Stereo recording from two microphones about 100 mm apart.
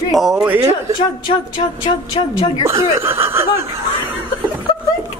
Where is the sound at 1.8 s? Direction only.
70° left (ahead or behind).